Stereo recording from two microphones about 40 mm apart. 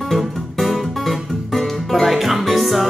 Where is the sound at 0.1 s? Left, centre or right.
Centre.